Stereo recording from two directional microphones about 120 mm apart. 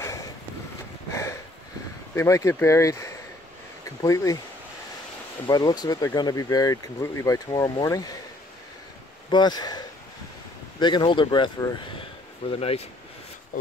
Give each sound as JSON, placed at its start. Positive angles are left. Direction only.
{"t": 2.1, "sound": "speech", "side_deg": 25}
{"t": 5.5, "sound": "speech", "side_deg": 35}
{"t": 7.4, "sound": "speech", "side_deg": 35}
{"t": 9.3, "sound": "speech", "side_deg": 35}
{"t": 12.4, "sound": "speech", "side_deg": 55}